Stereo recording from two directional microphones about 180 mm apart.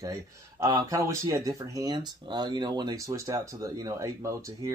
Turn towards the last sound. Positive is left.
turn(degrees=-20)  # may be behind; listen again after turning